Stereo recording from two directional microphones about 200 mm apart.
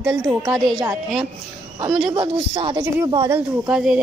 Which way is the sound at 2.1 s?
25° right (ahead or behind).